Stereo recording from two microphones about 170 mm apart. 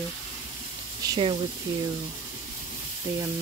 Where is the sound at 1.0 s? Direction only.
25° right (ahead or behind).